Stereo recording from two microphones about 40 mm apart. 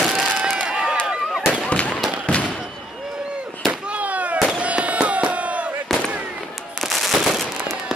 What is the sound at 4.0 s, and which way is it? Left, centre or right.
Fireworks, right.